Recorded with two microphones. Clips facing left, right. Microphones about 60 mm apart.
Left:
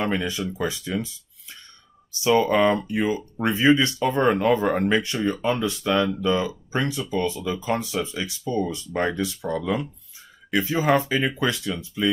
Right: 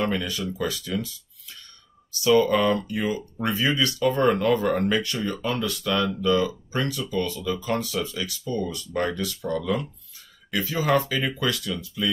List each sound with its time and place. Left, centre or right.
0.0 s speech: left